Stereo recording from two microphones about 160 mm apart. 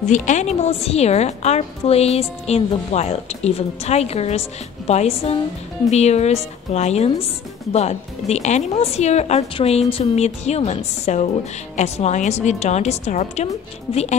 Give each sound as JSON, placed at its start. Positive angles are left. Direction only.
{"t": 0.1, "sound": "a woman's voice", "side_deg": 50}
{"t": 13.9, "sound": "speech", "side_deg": 35}